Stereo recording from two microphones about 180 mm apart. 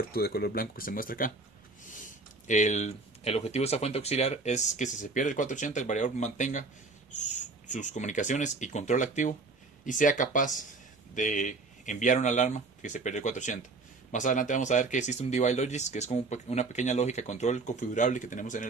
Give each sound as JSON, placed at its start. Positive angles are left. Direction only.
{"t": 0.1, "sound": "speech", "side_deg": 60}